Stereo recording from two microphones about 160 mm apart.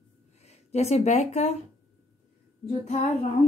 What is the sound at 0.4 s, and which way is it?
Speech, 45° left (ahead or behind).